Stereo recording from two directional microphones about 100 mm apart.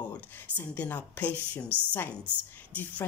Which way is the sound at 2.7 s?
15° left (ahead or behind).